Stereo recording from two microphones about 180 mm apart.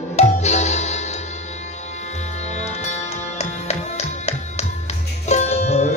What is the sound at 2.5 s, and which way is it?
Music, 40° left (ahead or behind).